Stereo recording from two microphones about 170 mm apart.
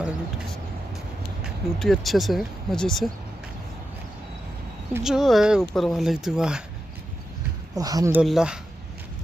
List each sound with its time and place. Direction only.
1.4 s speech: centre (ahead or behind)
5.0 s speech: centre (ahead or behind)
7.7 s speech: 20° right (ahead or behind)
8.2 s speech: 5° right (ahead or behind)